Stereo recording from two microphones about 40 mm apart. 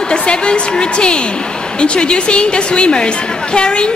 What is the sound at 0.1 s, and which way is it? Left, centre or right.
A woman's voice, left.